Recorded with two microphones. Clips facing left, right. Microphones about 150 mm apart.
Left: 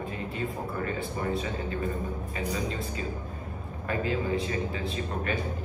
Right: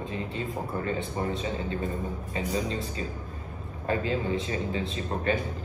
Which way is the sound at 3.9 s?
30° right (ahead or behind).